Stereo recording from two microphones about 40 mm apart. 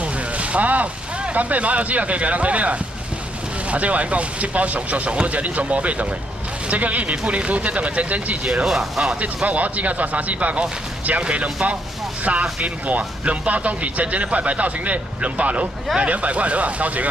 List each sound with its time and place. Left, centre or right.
0.0 s a sound: right
1.3 s speech: right
8.6 s speech: centre
9.1 s speech: right